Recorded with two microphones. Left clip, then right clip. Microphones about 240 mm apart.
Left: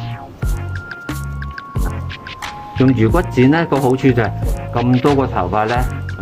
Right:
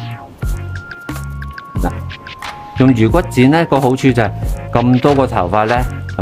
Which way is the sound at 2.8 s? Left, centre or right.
Right.